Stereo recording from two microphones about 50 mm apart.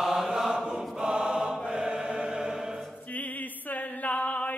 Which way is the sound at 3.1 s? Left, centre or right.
Left.